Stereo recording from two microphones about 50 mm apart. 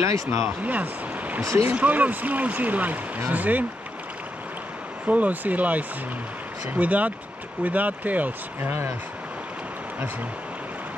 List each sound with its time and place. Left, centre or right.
0.0 s speech: right
0.7 s speech: right
5.0 s speech: right